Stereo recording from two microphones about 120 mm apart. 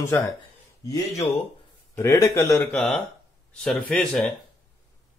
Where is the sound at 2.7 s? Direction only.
5° left (ahead or behind).